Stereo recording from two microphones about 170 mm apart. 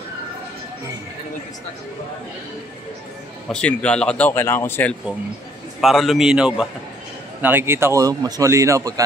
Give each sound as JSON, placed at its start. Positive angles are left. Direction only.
{"t": 3.4, "sound": "speech", "side_deg": 5}
{"t": 5.8, "sound": "a man's voice", "side_deg": 0}